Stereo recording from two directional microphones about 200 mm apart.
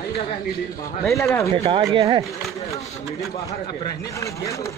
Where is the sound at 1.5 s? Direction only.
25° right (ahead or behind).